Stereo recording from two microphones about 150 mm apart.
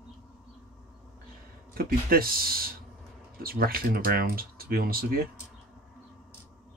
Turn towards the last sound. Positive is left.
turn(degrees=-80)